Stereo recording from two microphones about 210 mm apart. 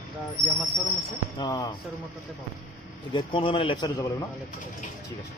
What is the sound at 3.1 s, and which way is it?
Speech, 20° left (ahead or behind).